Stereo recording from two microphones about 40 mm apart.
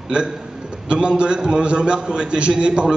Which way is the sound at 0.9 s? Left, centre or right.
Right.